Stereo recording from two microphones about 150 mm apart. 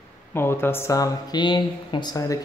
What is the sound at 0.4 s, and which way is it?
Speech, 15° left (ahead or behind).